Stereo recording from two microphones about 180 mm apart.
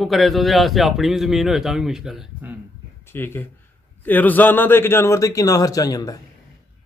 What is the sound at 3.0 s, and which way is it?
A man's voice, 10° left (ahead or behind).